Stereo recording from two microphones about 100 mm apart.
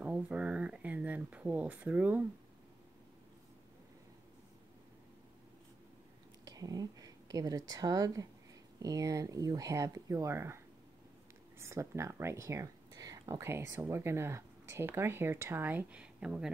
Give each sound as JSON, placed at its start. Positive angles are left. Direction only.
{"t": 0.0, "sound": "speech", "side_deg": -10}
{"t": 6.4, "sound": "speech", "side_deg": -40}